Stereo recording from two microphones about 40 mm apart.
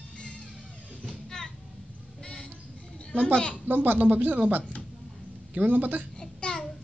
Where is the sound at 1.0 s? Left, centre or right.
Centre.